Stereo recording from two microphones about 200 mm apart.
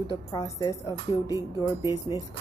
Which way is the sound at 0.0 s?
20° left (ahead or behind).